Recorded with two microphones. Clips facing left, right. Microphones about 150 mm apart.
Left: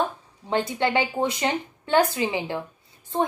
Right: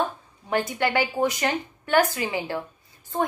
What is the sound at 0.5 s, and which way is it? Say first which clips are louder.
A woman's voice: left 1 dB; 20° left (ahead or behind).